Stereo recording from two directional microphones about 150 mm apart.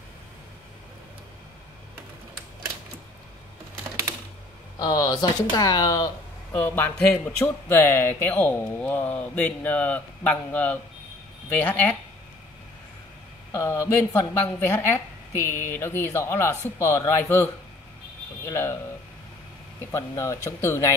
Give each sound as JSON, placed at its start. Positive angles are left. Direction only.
{"t": 4.7, "sound": "speech", "side_deg": 25}
{"t": 13.5, "sound": "speech", "side_deg": 15}
{"t": 19.9, "sound": "speech", "side_deg": 20}